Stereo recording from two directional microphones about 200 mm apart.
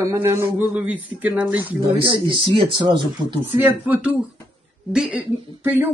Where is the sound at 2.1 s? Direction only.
25° right (ahead or behind).